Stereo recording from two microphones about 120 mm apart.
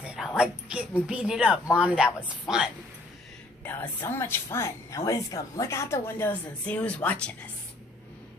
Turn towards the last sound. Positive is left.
turn(degrees=10)  # may be behind; listen again after turning